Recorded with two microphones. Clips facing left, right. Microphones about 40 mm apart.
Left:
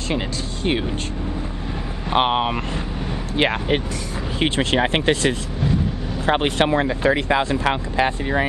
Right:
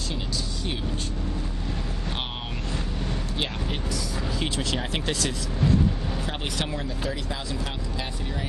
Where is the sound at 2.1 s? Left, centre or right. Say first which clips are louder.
Left 15 dB; left.